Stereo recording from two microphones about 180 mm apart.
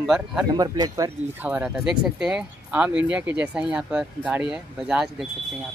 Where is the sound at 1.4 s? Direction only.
10° right (ahead or behind).